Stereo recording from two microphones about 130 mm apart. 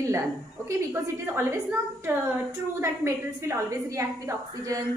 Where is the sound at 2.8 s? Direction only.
20° right (ahead or behind).